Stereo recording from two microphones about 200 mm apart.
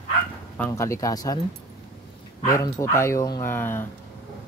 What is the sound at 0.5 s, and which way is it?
Speech, 10° left (ahead or behind).